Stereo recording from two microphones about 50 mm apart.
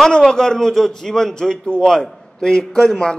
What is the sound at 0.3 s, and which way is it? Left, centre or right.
A man's voice, centre.